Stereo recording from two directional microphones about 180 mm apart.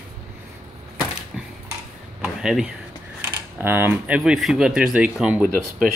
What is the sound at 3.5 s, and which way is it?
Speech, 10° right (ahead or behind).